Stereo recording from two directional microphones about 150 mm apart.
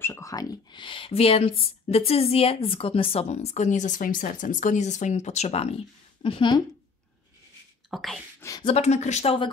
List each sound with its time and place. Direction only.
0.0 s speech: 20° left (ahead or behind); by 5.8 s 45° left (ahead or behind)
6.2 s speech: 35° left (ahead or behind)
7.9 s speech: centre (ahead or behind)
8.4 s speech: 20° left (ahead or behind)
8.6 s speech: 45° left (ahead or behind)